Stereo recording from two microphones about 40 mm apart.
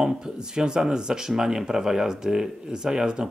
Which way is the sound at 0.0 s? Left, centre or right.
Centre.